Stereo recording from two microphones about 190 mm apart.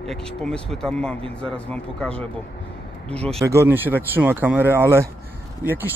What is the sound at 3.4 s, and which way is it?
Speech, 15° right (ahead or behind).